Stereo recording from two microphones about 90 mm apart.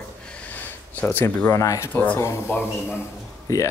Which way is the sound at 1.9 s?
15° left (ahead or behind).